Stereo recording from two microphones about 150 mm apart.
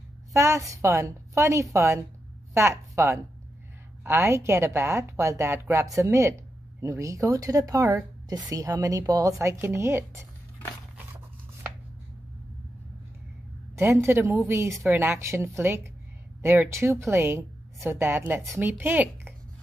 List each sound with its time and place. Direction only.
0.3 s a woman's voice: 20° right (ahead or behind)
13.7 s speech: 15° right (ahead or behind)